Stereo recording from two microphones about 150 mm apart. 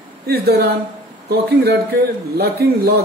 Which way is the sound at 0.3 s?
90° right.